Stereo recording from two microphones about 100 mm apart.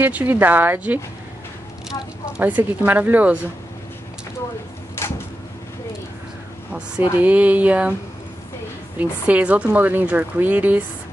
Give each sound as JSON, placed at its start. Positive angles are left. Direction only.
{"t": 0.0, "sound": "a woman's voice", "side_deg": -20}
{"t": 6.7, "sound": "a woman's voice", "side_deg": -15}
{"t": 8.9, "sound": "a woman's voice", "side_deg": -15}